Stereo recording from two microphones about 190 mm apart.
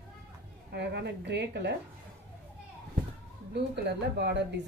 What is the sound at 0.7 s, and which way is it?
A woman's voice, 60° right (ahead or behind).